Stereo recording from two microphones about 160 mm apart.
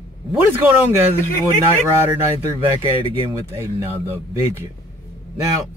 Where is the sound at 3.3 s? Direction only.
15° right (ahead or behind).